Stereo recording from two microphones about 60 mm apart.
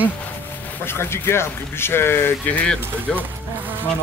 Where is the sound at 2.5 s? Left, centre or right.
Centre.